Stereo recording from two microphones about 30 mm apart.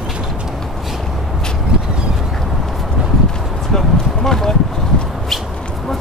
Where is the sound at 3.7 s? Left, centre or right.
Centre.